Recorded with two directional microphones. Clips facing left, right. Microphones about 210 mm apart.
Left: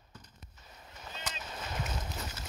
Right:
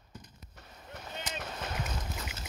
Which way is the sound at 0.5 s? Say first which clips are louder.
Right 8 dB; 65° right (ahead or behind).